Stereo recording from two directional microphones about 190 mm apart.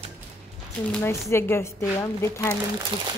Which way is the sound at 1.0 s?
10° left (ahead or behind).